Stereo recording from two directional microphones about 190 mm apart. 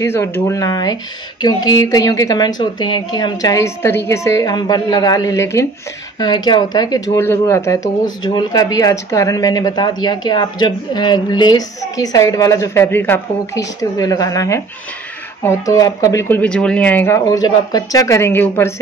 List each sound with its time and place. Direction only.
0.0 s speech: 15° left (ahead or behind)